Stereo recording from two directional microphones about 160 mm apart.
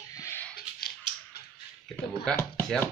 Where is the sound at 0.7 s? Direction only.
75° left (ahead or behind).